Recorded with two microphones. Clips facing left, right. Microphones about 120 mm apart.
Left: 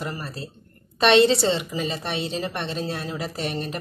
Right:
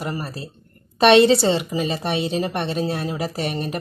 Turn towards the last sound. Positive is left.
turn(degrees=-15)  # may be behind; listen again after turning